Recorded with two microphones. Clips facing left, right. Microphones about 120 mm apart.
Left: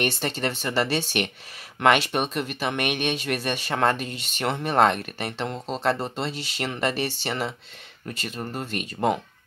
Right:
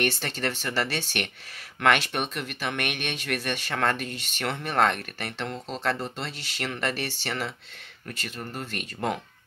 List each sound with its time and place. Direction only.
0.0 s speech: 20° left (ahead or behind)